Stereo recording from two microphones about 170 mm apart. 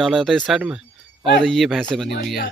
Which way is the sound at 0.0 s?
Centre (ahead or behind).